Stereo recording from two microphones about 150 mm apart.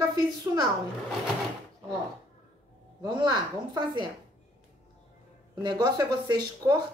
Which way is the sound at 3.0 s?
30° right (ahead or behind).